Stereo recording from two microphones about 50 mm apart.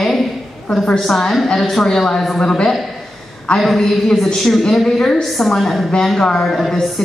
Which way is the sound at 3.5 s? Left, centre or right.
Left.